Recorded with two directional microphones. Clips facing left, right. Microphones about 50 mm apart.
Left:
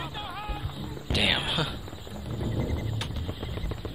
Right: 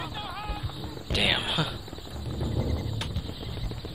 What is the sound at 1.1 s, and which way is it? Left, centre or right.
Speech, centre.